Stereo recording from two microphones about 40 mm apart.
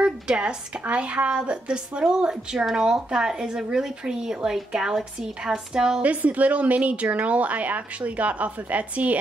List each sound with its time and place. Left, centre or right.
0.0 s a sound: right
0.8 s speech: right
6.0 s speech: right